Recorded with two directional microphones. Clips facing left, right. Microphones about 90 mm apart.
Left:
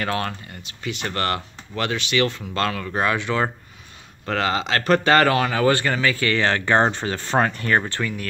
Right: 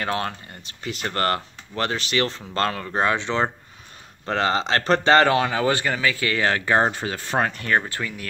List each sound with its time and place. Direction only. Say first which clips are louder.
0.0 s speech: left 1 dB; 25° right (ahead or behind)
0.7 s speech: left 1 dB; 40° right (ahead or behind); by 5.9 s 15° right (ahead or behind)
5.9 s speech: left 2 dB; 5° right (ahead or behind)